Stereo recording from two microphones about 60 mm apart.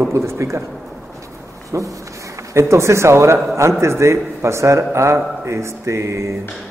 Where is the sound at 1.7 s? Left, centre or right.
Right.